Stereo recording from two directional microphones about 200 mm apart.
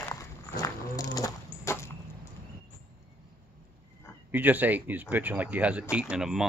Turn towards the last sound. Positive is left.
turn(degrees=-5)  # may be behind; listen again after turning